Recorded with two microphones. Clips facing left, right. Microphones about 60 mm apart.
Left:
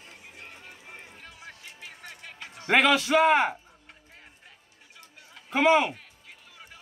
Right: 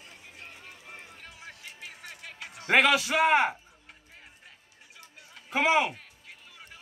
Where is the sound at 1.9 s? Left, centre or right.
Centre.